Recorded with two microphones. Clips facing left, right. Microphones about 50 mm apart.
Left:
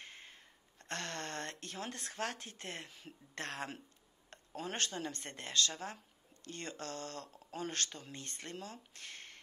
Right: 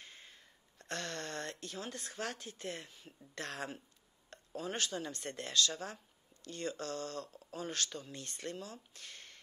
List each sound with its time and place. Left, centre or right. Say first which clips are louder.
0.0 s a sound: left 2 dB; left
3.3 s speech: even; left
6.4 s speech: right 4 dB; left
8.5 s speech: even; left